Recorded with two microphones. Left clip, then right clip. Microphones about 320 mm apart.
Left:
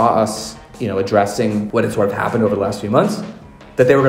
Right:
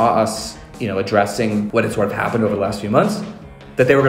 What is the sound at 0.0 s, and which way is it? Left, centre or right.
Speech, centre.